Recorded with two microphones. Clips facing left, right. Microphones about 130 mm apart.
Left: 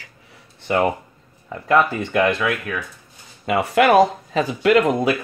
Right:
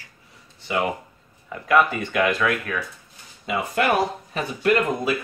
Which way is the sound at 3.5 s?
80° left.